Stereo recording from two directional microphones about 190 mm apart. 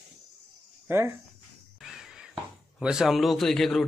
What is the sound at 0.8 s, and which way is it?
Speech, 10° right (ahead or behind).